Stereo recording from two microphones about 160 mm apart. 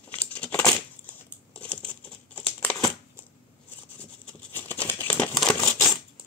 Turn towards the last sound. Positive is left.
turn(degrees=5)  # may be behind; listen again after turning